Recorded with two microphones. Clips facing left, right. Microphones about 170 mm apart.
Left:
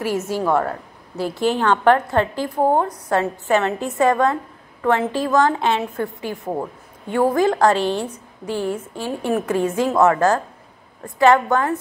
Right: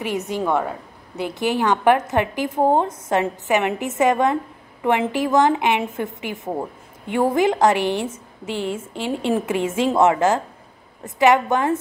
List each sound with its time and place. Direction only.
0.6 s a woman's voice: 15° right (ahead or behind)